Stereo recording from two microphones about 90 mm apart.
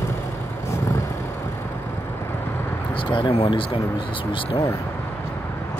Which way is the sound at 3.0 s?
70° left (ahead or behind).